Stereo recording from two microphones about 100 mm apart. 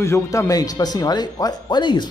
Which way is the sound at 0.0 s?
30° left (ahead or behind).